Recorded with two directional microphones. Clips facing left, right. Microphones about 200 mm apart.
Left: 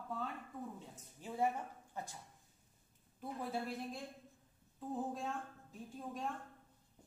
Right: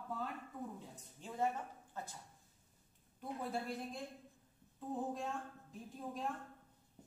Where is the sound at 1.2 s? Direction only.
5° left (ahead or behind).